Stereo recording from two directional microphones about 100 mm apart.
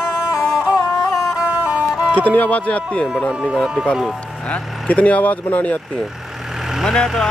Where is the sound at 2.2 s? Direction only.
15° left (ahead or behind).